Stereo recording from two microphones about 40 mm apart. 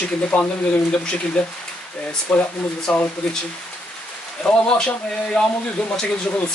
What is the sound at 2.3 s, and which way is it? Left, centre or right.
Speech, left.